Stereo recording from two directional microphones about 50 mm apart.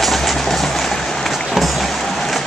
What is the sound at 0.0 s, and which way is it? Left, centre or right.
Train, centre.